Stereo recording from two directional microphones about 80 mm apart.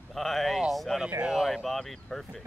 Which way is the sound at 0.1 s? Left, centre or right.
Centre.